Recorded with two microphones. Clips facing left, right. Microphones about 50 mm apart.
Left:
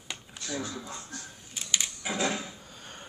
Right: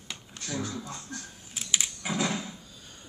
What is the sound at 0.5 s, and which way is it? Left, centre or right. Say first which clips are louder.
Speech: right 1 dB; left.